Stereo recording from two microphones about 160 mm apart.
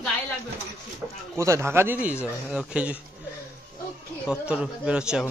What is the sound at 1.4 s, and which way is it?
A man's voice, 15° right (ahead or behind).